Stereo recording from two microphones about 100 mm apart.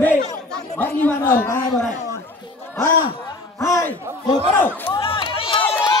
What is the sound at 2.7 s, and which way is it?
Speech, 35° left (ahead or behind).